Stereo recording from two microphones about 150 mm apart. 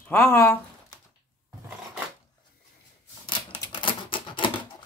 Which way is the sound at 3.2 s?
30° left (ahead or behind).